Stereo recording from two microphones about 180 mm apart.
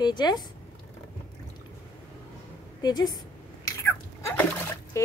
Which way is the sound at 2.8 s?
20° left (ahead or behind).